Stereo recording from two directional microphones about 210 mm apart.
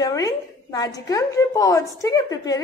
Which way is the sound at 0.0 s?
15° left (ahead or behind).